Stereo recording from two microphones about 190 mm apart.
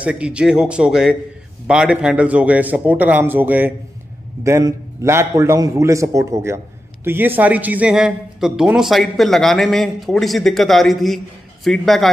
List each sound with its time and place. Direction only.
0.0 s a man's voice: 5° right (ahead or behind)